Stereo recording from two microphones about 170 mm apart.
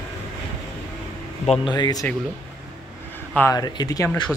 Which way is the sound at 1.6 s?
25° left (ahead or behind).